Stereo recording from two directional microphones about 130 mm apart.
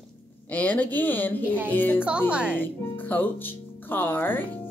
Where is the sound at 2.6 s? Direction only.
15° left (ahead or behind).